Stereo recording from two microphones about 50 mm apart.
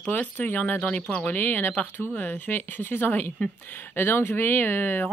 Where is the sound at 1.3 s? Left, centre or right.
Left.